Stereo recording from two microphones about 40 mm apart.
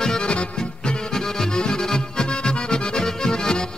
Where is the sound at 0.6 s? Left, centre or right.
Centre.